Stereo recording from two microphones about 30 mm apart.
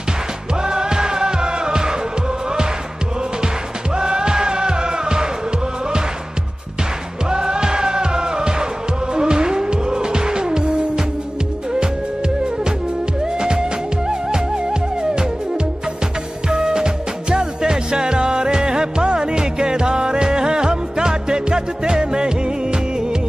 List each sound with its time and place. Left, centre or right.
0.7 s music: right
3.9 s music: right
7.2 s music: right
13.2 s music: right